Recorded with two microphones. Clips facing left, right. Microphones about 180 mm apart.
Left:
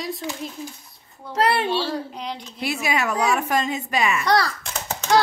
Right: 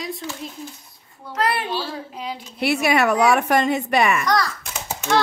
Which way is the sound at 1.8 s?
Centre (ahead or behind).